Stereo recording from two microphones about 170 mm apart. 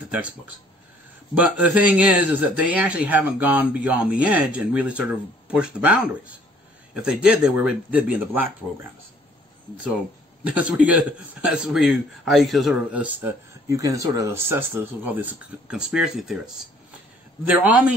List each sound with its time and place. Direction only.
1.3 s speech: 10° right (ahead or behind)
10.5 s speech: 10° right (ahead or behind)
17.5 s speech: 10° right (ahead or behind)